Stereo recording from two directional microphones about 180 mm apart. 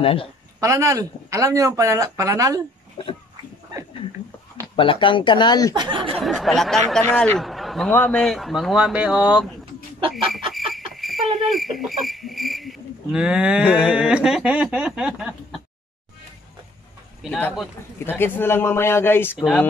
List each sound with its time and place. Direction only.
0.0 s speech: 30° left (ahead or behind)
0.6 s speech: 15° right (ahead or behind)
3.0 s speech: 30° left (ahead or behind)
4.7 s speech: 30° left (ahead or behind)
5.8 s speech: 25° right (ahead or behind)
6.1 s speech: centre (ahead or behind)
10.0 s chicken: 30° right (ahead or behind)
10.5 s cricket: centre (ahead or behind)
13.8 s speech: 5° right (ahead or behind)
17.2 s speech: 5° right (ahead or behind)
17.9 s speech: 10° left (ahead or behind)
19.3 s speech: centre (ahead or behind)